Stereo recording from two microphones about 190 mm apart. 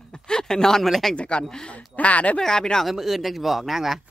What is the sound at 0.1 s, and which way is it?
Speech, 5° left (ahead or behind).